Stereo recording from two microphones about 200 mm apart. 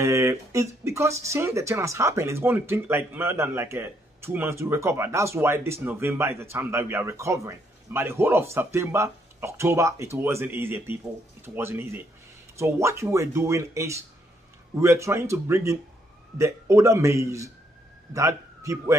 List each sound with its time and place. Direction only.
0.0 s speech: 15° right (ahead or behind)